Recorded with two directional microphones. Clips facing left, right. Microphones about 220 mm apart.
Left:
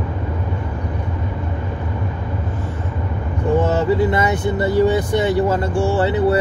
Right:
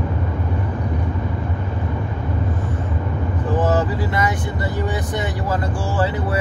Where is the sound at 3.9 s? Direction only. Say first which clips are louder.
Left 5 dB; 25° left (ahead or behind).